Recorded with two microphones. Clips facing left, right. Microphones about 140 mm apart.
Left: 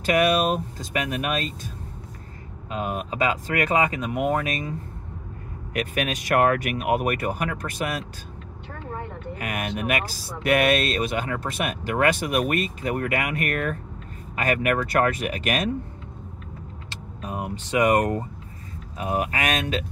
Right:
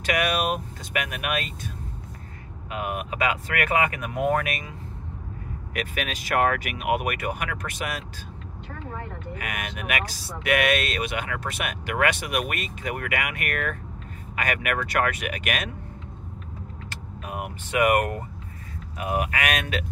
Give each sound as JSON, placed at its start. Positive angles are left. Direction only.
{"t": 0.0, "sound": "speech", "side_deg": 35}
{"t": 2.7, "sound": "speech", "side_deg": 30}
{"t": 5.7, "sound": "speech", "side_deg": 45}
{"t": 9.4, "sound": "speech", "side_deg": 35}
{"t": 16.9, "sound": "speech", "side_deg": 25}